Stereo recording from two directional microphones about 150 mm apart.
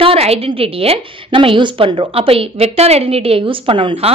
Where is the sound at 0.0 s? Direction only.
40° right (ahead or behind).